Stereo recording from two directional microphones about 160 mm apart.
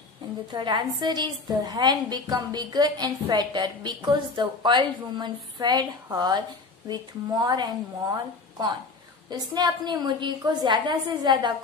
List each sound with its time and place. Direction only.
0.5 s a woman's voice: 30° right (ahead or behind)
9.3 s a woman's voice: 25° right (ahead or behind)